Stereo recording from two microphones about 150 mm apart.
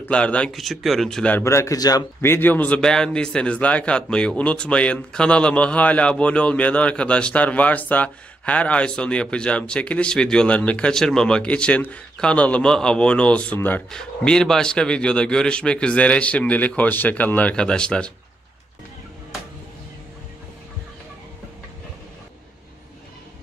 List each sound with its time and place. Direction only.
0.0 s a man's voice: 10° left (ahead or behind)